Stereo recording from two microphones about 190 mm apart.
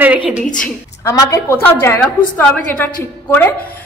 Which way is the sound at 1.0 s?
15° left (ahead or behind).